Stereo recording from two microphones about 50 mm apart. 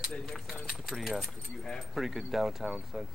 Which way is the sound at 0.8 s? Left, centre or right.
Centre.